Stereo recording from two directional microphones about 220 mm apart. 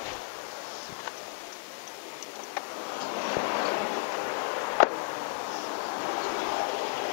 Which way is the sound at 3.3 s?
25° left (ahead or behind).